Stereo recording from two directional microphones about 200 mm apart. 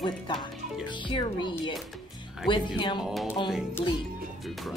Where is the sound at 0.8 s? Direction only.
25° left (ahead or behind).